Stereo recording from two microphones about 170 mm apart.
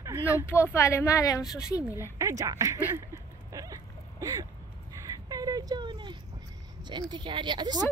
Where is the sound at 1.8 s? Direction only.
15° right (ahead or behind).